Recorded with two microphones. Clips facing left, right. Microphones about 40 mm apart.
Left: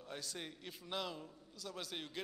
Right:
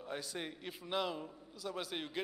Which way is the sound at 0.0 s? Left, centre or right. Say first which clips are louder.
Right 5 dB; centre.